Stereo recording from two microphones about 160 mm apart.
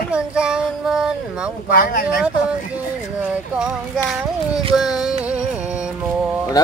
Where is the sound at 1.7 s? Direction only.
60° left (ahead or behind).